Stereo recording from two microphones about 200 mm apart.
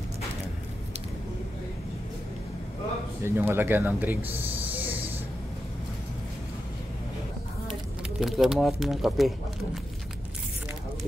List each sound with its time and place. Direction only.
3.3 s speech: 10° right (ahead or behind)
8.2 s speech: centre (ahead or behind)